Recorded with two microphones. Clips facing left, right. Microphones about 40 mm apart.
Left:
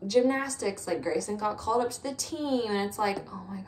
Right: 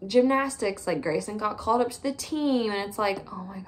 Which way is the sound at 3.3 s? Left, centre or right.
Centre.